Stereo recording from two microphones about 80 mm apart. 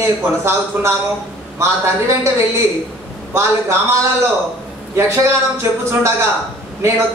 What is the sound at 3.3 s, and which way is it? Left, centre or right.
Speech, right.